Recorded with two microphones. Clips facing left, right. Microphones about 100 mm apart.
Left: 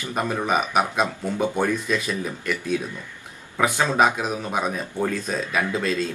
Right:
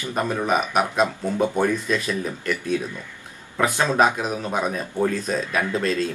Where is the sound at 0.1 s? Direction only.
5° left (ahead or behind).